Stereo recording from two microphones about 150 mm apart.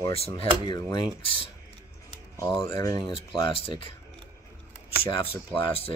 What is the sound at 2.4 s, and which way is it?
Mantra, 20° left (ahead or behind).